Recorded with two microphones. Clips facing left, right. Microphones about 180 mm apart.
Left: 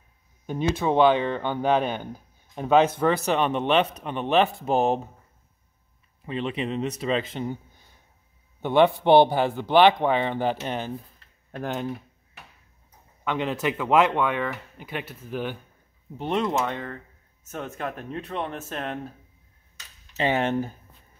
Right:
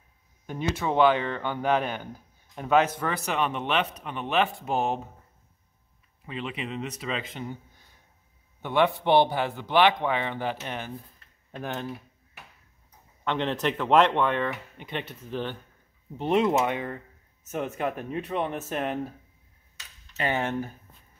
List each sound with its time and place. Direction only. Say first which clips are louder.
0.5 s a man's voice: left 4 dB; 20° left (ahead or behind)
6.2 s a man's voice: left 6 dB; 30° left (ahead or behind)
8.6 s a man's voice: left 5 dB; 30° left (ahead or behind)
11.5 s speech: left 4 dB; 15° left (ahead or behind)
13.2 s speech: left 1 dB; 5° left (ahead or behind)
16.2 s speech: right 3 dB; 5° right (ahead or behind)
16.6 s speech: right 2 dB; 15° right (ahead or behind)
20.2 s speech: left 4 dB; 20° left (ahead or behind)